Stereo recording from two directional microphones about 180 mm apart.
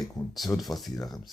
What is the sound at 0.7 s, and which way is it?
Speech, 20° left (ahead or behind).